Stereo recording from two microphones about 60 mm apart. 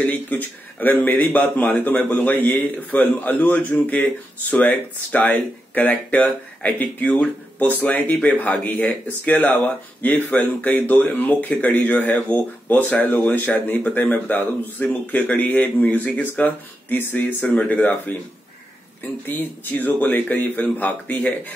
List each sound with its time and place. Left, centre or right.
0.0 s speech: left
19.2 s speech: left